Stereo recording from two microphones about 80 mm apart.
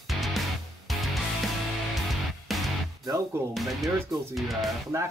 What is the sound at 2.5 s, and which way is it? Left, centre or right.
Music, centre.